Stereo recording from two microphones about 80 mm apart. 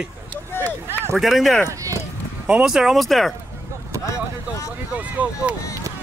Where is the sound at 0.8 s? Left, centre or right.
Right.